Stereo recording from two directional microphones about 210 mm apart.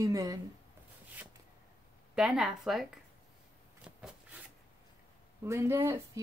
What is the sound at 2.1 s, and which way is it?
Speech, 5° right (ahead or behind).